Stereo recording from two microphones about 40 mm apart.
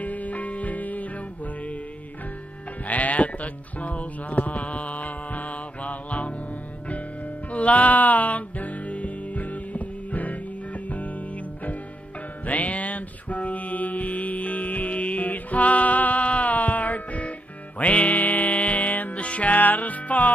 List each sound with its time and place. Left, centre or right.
0.0 s music: left
2.9 s music: left
7.5 s music: left